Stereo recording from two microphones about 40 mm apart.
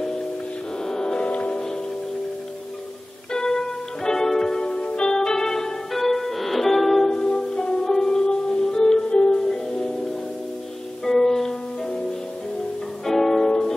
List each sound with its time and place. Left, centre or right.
0.8 s wild animals: centre
1.2 s music: left
3.3 s music: centre
7.1 s music: centre
9.1 s music: left
9.4 s music: centre
11.1 s music: centre
13.0 s music: centre